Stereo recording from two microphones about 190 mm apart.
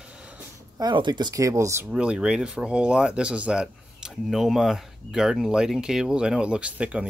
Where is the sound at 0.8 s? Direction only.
25° right (ahead or behind).